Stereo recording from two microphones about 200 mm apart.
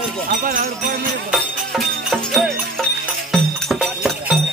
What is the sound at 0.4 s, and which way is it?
Music, 45° right (ahead or behind).